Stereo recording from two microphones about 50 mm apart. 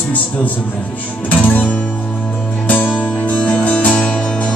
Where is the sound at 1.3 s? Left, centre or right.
Left.